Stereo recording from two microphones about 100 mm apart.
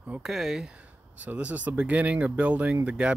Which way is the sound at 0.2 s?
5° right (ahead or behind).